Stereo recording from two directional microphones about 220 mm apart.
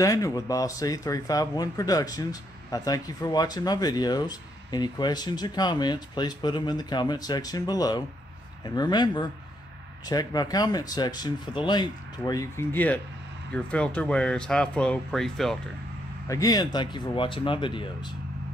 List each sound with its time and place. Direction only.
0.0 s speech: 15° left (ahead or behind)
16.3 s speech: 15° left (ahead or behind)